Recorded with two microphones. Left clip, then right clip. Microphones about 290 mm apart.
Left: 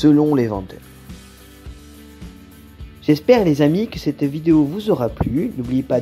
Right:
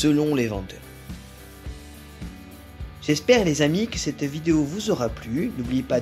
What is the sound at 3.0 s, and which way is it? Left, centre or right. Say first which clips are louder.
Speech: left 5 dB; centre.